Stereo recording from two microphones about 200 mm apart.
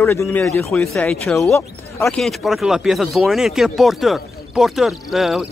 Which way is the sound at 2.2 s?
Centre (ahead or behind).